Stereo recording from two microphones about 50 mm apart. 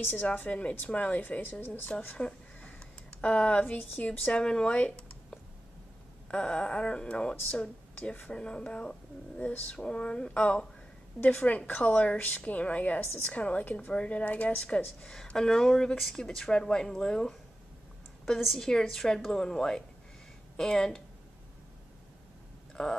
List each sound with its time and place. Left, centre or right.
0.1 s speech: left
1.9 s speech: centre; by 4.2 s left
4.3 s speech: centre
9.4 s a woman's voice: left
9.8 s a woman's voice: centre
18.6 s speech: centre
22.8 s speech: centre